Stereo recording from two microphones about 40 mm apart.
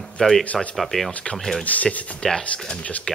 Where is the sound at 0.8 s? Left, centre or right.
Centre.